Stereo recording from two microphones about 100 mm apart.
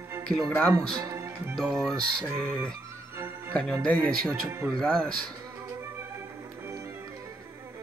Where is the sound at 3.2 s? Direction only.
20° right (ahead or behind).